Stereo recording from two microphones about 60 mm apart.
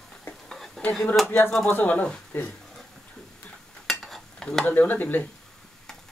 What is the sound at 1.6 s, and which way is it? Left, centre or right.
Speech, left.